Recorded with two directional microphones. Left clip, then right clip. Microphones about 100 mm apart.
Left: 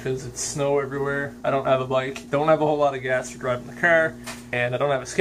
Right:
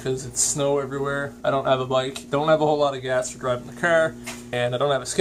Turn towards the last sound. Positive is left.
turn(degrees=-30)  # may be behind; listen again after turning